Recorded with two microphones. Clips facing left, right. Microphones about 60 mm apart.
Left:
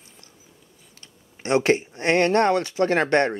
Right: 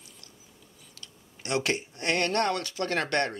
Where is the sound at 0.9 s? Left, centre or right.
Left.